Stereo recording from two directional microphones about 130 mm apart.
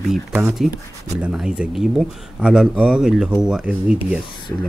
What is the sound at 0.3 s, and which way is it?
Speech, 15° right (ahead or behind).